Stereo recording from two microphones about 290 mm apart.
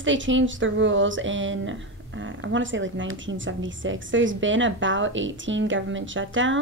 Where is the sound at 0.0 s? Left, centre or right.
Right.